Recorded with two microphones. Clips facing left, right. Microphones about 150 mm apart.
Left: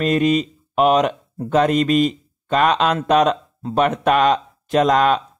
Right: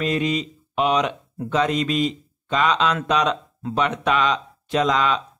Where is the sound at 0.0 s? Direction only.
50° left (ahead or behind).